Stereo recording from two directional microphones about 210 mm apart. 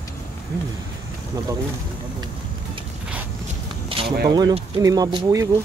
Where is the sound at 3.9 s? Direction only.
25° right (ahead or behind).